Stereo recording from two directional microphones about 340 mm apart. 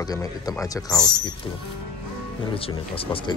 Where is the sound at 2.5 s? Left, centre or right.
Centre.